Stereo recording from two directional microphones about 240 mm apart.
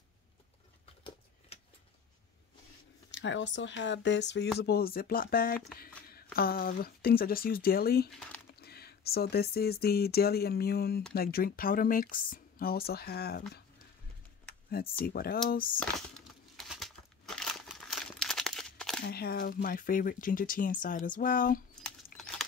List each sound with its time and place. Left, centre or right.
1.5 s a sound: left
3.1 s speech: left
15.0 s speech: left
16.5 s crumpling: centre
19.0 s speech: left
21.7 s a sound: centre